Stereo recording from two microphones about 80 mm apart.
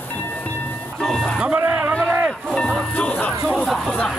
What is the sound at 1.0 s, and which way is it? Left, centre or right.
Train, centre.